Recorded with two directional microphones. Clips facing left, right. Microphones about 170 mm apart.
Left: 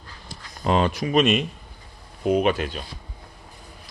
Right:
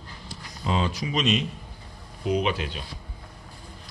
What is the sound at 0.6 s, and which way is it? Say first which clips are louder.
Speech: left 6 dB; 60° left (ahead or behind).